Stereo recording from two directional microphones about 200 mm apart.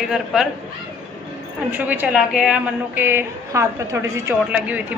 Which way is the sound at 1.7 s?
10° right (ahead or behind).